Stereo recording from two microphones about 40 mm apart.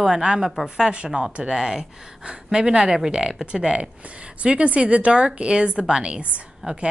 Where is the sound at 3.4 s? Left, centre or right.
Right.